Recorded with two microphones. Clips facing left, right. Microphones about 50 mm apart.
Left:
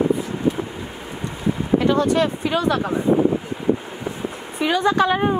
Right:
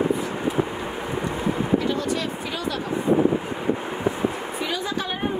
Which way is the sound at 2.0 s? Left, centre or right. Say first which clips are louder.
Left 7 dB; left.